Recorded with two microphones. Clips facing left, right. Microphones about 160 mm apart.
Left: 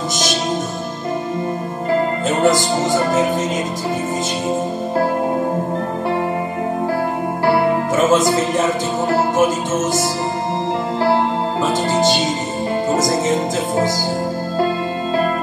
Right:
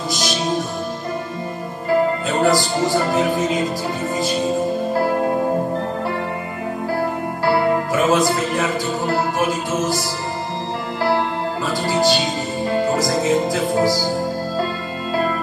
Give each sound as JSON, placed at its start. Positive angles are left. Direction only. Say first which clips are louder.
{"t": 2.2, "sound": "music", "louder": "left 2 dB", "side_deg": 25}
{"t": 8.1, "sound": "a man's voice", "louder": "left 2 dB", "side_deg": 20}
{"t": 12.7, "sound": "music", "louder": "left 1 dB", "side_deg": 20}